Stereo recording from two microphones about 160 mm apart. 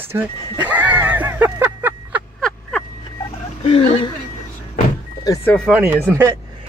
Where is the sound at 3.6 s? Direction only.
35° left (ahead or behind).